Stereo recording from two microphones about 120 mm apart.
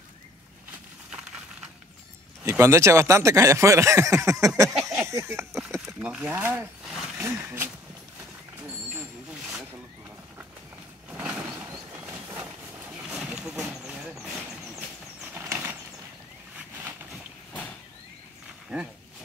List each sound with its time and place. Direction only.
2.5 s speech: 20° right (ahead or behind)
5.9 s speech: 10° right (ahead or behind)
9.3 s snake: 5° right (ahead or behind)
12.1 s a sound: 15° right (ahead or behind)
13.1 s vehicle: 5° right (ahead or behind)
15.3 s a sound: 20° right (ahead or behind)
18.7 s speech: 5° right (ahead or behind)